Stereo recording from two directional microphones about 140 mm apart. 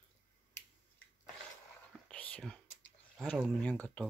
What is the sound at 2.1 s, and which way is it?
Whispering, 5° left (ahead or behind).